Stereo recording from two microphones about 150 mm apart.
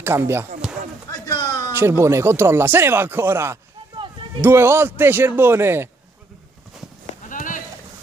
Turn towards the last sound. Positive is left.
turn(degrees=60)  # may be behind; listen again after turning